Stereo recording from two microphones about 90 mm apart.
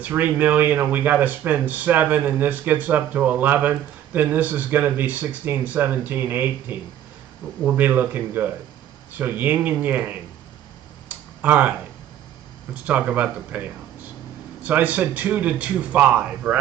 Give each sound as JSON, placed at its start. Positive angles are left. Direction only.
{"t": 0.0, "sound": "speech", "side_deg": -20}
{"t": 11.1, "sound": "a sound", "side_deg": -20}
{"t": 12.7, "sound": "speech", "side_deg": -15}